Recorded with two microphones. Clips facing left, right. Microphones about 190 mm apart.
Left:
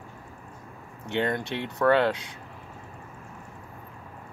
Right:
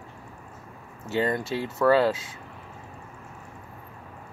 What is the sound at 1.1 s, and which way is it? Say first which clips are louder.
Speech: right 2 dB; 5° right (ahead or behind).